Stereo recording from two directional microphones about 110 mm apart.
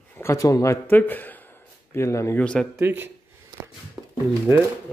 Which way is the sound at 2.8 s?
20° right (ahead or behind).